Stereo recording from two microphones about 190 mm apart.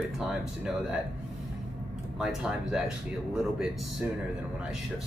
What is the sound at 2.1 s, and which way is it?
Speech, centre (ahead or behind).